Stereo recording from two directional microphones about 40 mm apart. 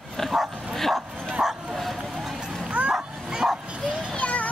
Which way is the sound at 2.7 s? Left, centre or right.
Right.